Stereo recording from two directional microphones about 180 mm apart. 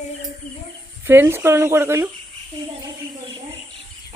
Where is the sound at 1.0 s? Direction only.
10° right (ahead or behind).